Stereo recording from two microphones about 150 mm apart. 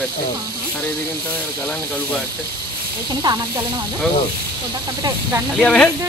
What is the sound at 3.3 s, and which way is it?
Speech, 30° right (ahead or behind).